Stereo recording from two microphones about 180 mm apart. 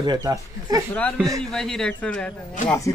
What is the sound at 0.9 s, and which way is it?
Speech, 5° left (ahead or behind).